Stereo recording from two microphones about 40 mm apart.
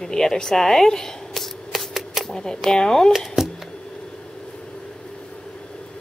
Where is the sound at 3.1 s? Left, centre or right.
Centre.